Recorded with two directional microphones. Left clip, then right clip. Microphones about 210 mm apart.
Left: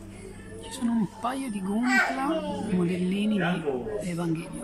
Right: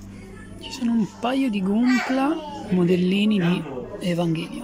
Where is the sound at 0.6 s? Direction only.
5° right (ahead or behind).